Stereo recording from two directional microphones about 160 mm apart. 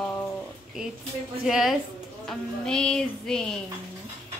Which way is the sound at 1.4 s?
Centre (ahead or behind).